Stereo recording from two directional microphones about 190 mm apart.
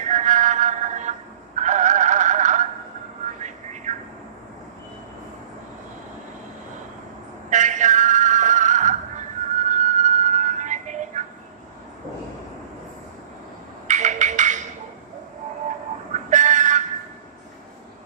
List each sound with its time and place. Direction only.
0.0 s music: 40° right (ahead or behind)
1.6 s synthetic singing: 40° right (ahead or behind)
3.9 s a sound: 40° right (ahead or behind)
7.4 s music: 40° right (ahead or behind)
13.8 s music: 40° right (ahead or behind)
16.1 s vehicle: 40° right (ahead or behind)